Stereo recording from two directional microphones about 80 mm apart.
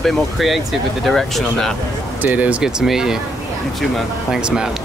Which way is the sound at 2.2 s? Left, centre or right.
Right.